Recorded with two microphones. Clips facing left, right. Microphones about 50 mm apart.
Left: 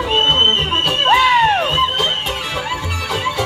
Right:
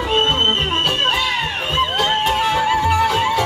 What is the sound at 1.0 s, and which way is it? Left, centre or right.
Music, left.